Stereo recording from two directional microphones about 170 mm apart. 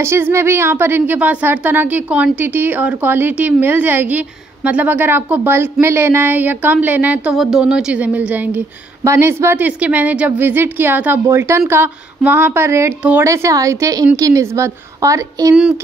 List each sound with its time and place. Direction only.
0.0 s a woman's voice: 15° right (ahead or behind)